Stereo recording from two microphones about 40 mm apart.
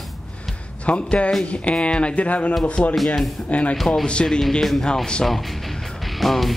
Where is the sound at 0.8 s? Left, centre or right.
Left.